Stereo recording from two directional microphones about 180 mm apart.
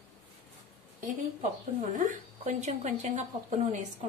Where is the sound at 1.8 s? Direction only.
45° right (ahead or behind).